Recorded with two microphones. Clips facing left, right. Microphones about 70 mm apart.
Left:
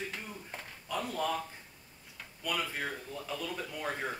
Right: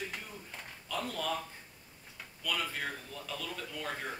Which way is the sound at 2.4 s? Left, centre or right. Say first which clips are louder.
Left 1 dB; centre.